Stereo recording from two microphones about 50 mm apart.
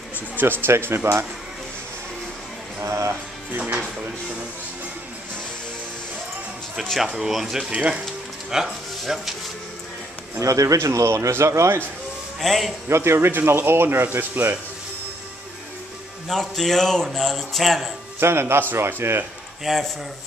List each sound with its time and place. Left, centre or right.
0.1 s speech: right
2.8 s music: right
3.5 s speech: right
6.8 s speech: centre
7.7 s speech: right
8.5 s speech: centre
10.4 s speech: right
12.4 s speech: centre
12.8 s speech: right
13.3 s speech: right
16.3 s speech: centre
18.2 s speech: right
19.6 s speech: centre